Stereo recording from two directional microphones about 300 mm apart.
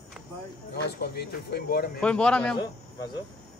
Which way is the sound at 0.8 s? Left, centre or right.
Left.